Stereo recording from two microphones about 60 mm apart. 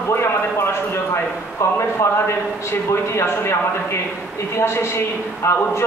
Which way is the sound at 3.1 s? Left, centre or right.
Left.